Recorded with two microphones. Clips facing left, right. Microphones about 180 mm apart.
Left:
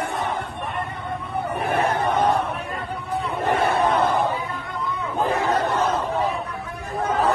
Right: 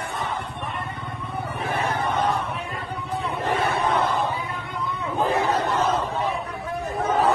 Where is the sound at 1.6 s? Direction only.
60° left (ahead or behind).